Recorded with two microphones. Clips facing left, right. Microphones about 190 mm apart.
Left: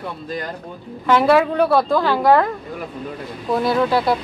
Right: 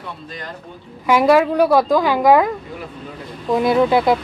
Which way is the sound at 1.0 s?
10° right (ahead or behind).